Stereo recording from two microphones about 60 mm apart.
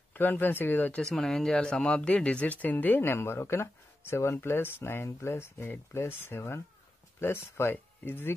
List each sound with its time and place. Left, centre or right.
0.1 s speech: left
1.1 s speech: centre; by 8.4 s left